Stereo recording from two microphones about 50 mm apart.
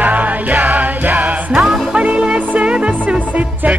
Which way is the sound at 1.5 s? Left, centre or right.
Centre.